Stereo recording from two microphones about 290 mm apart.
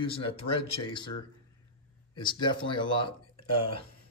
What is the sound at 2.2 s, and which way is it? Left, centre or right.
Speech, centre.